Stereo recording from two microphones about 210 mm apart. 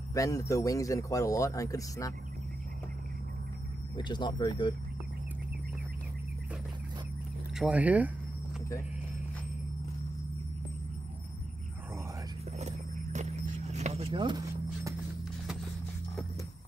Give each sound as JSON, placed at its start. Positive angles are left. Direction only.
{"t": 0.1, "sound": "a man's voice", "side_deg": 15}
{"t": 3.9, "sound": "speech", "side_deg": 20}
{"t": 7.5, "sound": "speech", "side_deg": -5}
{"t": 12.5, "sound": "horse", "side_deg": -30}